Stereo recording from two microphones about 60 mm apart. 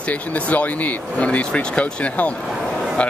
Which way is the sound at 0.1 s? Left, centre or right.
Left.